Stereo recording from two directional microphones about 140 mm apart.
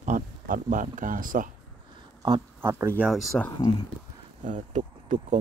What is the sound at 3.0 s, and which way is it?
Speech, centre (ahead or behind).